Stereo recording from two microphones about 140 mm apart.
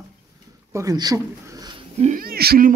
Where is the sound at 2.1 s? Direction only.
90° right.